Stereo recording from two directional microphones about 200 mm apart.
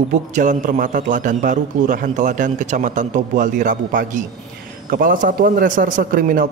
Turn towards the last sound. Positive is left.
turn(degrees=-45)  # may be behind; listen again after turning